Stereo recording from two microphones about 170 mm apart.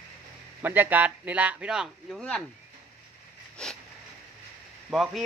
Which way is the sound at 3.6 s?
5° left (ahead or behind).